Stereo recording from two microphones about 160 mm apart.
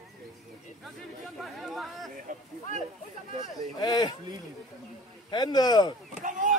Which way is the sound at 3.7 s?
25° left (ahead or behind).